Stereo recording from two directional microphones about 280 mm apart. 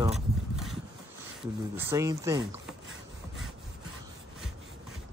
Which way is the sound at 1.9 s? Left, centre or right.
Centre.